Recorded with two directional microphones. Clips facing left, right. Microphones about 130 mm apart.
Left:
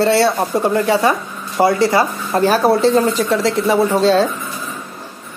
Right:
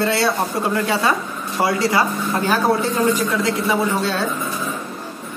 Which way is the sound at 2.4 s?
35° left (ahead or behind).